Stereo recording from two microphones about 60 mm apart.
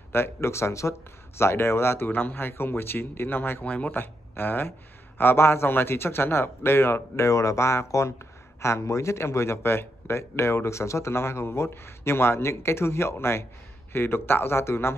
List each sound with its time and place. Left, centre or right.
0.1 s speech: left
2.0 s speech: left
3.6 s speech: left
3.9 s speech: left